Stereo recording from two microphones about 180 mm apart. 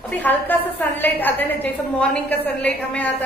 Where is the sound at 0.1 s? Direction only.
10° left (ahead or behind).